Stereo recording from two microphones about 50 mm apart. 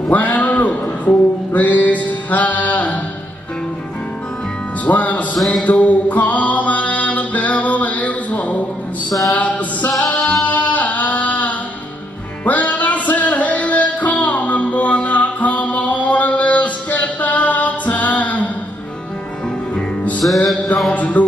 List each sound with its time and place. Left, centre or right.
0.1 s a sound: left
4.8 s music: left
5.5 s mantra: left
9.3 s music: left
20.2 s music: left